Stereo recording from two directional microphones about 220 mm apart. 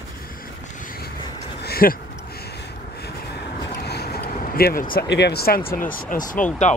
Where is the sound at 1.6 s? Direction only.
45° left (ahead or behind).